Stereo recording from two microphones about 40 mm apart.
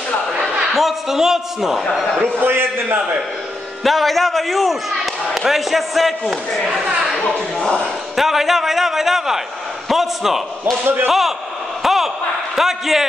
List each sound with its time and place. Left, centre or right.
0.7 s a man's voice: centre
2.4 s a man's voice: right
3.8 s speech: centre
7.5 s a man's voice: centre
8.2 s speech: centre
10.6 s speech: right
11.1 s speech: centre
11.8 s a sound: centre
12.5 s speech: centre